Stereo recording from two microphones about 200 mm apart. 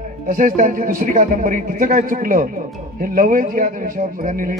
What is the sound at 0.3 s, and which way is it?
Speech, 40° right (ahead or behind).